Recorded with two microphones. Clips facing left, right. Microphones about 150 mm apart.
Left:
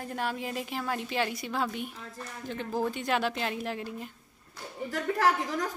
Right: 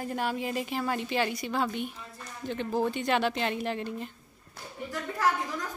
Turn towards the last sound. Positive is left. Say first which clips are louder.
# left 2 dB
turn(degrees=90)